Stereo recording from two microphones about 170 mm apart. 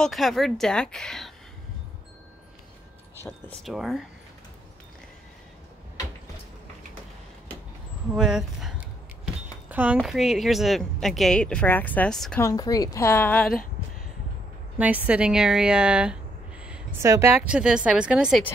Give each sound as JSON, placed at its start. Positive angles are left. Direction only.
{"t": 0.0, "sound": "speech", "side_deg": 0}
{"t": 3.6, "sound": "speech", "side_deg": 0}
{"t": 8.1, "sound": "a sound", "side_deg": -5}
{"t": 10.0, "sound": "speech", "side_deg": 0}
{"t": 12.4, "sound": "a woman's voice", "side_deg": 20}
{"t": 14.8, "sound": "speech", "side_deg": -10}